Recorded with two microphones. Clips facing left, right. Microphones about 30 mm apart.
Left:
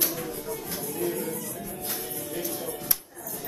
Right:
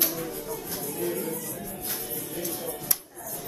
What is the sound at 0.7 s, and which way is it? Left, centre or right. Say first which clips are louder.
Music: left 1 dB; centre.